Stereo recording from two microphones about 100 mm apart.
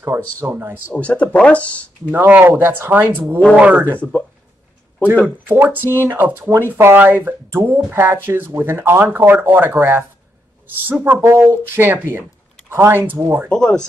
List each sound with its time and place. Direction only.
0.0 s speech: 25° right (ahead or behind)
0.9 s speech: 15° left (ahead or behind)
2.0 s speech: 20° right (ahead or behind)
5.5 s speech: 20° right (ahead or behind)
11.1 s speech: 20° right (ahead or behind)
13.5 s speech: 10° left (ahead or behind)